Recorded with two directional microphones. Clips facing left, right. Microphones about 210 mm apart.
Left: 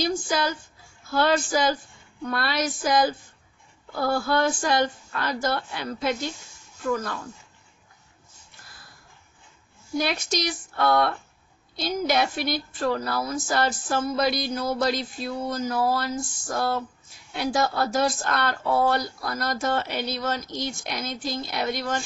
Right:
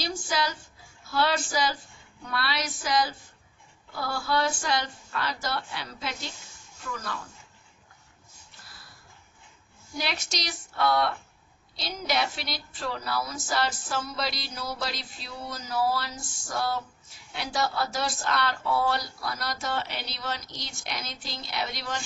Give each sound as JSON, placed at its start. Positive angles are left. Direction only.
{"t": 0.0, "sound": "a woman's voice", "side_deg": 50}
{"t": 9.9, "sound": "a woman's voice", "side_deg": 50}